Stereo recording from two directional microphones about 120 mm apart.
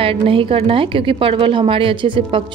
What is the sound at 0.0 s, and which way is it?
A woman's voice, 50° right (ahead or behind).